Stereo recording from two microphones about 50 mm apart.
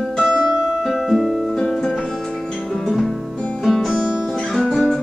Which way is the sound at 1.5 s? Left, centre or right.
Centre.